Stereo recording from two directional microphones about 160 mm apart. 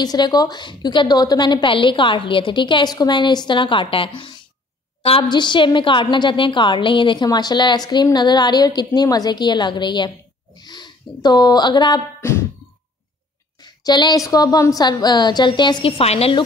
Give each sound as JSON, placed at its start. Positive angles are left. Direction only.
{"t": 0.0, "sound": "a woman's voice", "side_deg": 25}
{"t": 12.2, "sound": "a sound", "side_deg": 15}
{"t": 13.6, "sound": "a woman's voice", "side_deg": 25}